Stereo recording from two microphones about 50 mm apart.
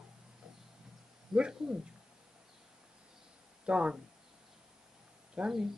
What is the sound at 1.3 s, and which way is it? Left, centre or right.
Speech, centre.